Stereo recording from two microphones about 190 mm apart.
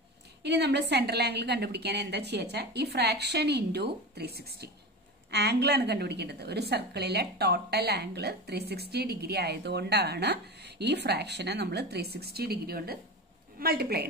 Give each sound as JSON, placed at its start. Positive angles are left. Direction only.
{"t": 0.4, "sound": "a woman's voice", "side_deg": -60}